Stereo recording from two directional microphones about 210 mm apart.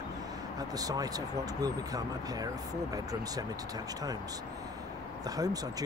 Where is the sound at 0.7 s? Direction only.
15° right (ahead or behind).